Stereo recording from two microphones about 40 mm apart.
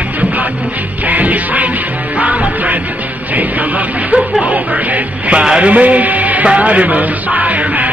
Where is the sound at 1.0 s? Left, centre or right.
Right.